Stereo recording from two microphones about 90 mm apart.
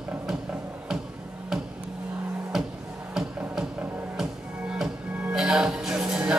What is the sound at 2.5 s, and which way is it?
Music, 5° right (ahead or behind).